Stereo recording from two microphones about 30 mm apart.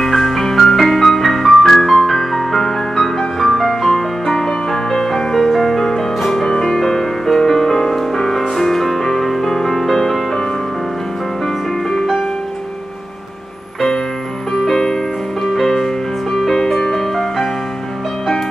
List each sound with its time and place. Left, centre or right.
0.0 s music: centre
5.3 s music: centre
11.4 s music: centre
14.7 s music: left
15.4 s music: centre